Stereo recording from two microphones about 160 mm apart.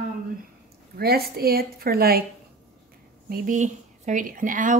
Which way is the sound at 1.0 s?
75° right (ahead or behind).